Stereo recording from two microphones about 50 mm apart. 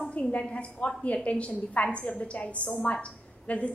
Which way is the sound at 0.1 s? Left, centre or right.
Left.